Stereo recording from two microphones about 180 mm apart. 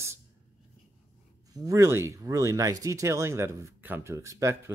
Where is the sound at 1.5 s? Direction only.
20° right (ahead or behind).